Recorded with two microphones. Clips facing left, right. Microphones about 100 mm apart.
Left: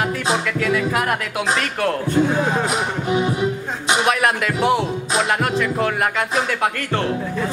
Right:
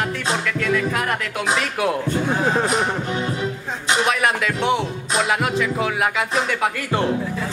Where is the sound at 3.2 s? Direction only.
15° left (ahead or behind).